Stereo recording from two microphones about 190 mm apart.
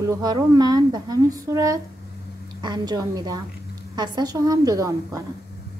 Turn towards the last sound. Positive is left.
turn(degrees=-15)  # may be behind; listen again after turning